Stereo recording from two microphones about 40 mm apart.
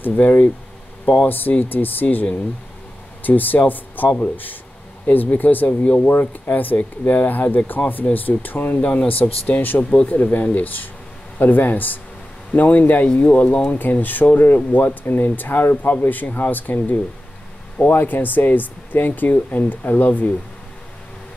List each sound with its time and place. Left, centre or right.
0.0 s speech: left
13.1 s speech: left